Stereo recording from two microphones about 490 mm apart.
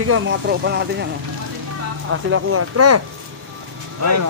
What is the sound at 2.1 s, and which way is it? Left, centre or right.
Speech, right.